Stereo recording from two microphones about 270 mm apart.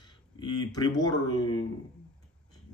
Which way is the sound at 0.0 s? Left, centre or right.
Centre.